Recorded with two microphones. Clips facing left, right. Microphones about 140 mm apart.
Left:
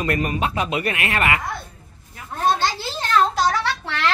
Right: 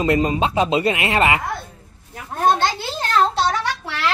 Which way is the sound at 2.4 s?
50° right (ahead or behind).